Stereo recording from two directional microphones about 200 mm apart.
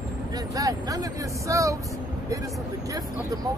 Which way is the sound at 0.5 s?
15° right (ahead or behind).